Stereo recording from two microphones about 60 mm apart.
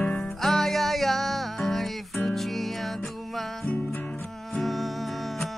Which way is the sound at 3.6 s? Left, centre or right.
Left.